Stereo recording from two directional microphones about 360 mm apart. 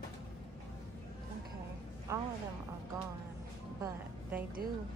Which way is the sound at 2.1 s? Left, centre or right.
Centre.